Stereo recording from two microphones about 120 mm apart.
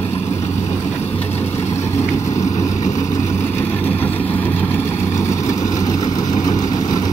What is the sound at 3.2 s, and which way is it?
Vehicle, 75° left (ahead or behind).